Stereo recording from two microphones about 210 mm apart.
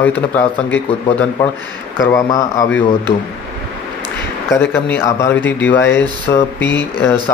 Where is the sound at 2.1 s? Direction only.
15° left (ahead or behind).